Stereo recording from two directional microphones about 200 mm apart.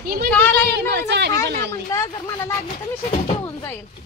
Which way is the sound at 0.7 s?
55° right (ahead or behind).